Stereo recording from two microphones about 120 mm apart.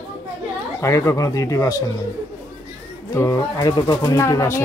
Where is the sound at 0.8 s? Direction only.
25° left (ahead or behind).